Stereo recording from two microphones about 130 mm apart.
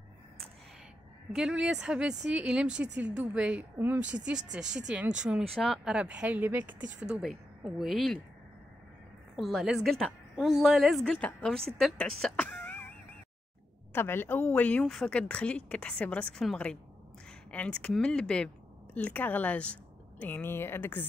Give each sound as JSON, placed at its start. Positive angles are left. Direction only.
{"t": 1.3, "sound": "a woman's voice", "side_deg": -5}
{"t": 9.4, "sound": "a woman's voice", "side_deg": 0}
{"t": 13.9, "sound": "a woman's voice", "side_deg": 15}